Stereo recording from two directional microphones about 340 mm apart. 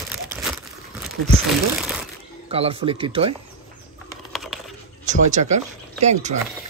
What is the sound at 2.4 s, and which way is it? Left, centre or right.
Speech, centre.